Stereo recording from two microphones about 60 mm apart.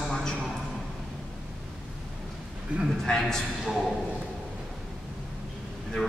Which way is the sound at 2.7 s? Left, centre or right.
Centre.